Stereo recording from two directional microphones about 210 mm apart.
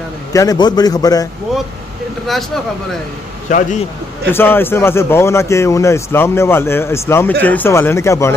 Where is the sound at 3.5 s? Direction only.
35° left (ahead or behind).